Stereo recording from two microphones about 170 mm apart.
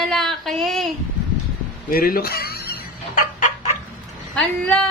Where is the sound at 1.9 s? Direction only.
60° left (ahead or behind).